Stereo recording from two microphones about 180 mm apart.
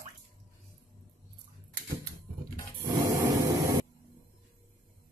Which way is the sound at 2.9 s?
15° right (ahead or behind).